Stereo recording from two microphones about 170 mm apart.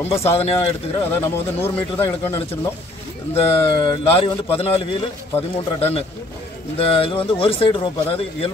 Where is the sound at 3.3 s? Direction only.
30° left (ahead or behind).